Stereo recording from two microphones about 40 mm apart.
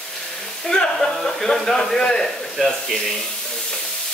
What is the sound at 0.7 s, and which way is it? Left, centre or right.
Speech, centre.